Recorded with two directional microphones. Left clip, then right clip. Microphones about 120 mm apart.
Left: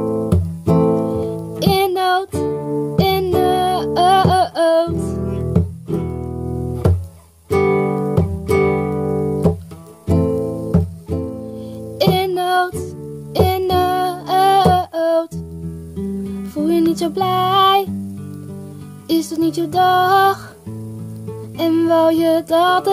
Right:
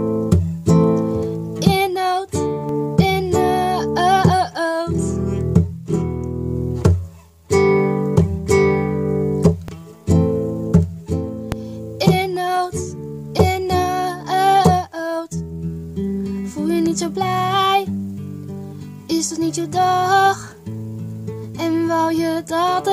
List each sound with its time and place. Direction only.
0.0 s music: 25° right (ahead or behind)
1.0 s music: centre (ahead or behind)
2.4 s music: 25° right (ahead or behind)
2.9 s music: centre (ahead or behind)
7.4 s music: 25° right (ahead or behind)
9.0 s music: 10° right (ahead or behind)
10.0 s music: 25° right (ahead or behind)
12.0 s music: centre (ahead or behind)
16.4 s music: centre (ahead or behind)
19.0 s music: centre (ahead or behind)
21.5 s child singing: centre (ahead or behind)